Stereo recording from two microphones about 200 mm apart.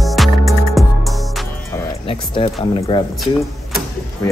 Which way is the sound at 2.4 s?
30° left (ahead or behind).